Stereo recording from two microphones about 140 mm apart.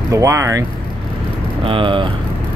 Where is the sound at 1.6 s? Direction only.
35° right (ahead or behind).